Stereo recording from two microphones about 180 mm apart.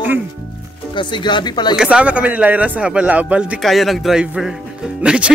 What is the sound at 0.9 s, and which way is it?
Speech, 25° left (ahead or behind).